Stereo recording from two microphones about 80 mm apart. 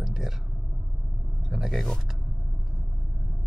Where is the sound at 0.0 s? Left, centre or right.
Centre.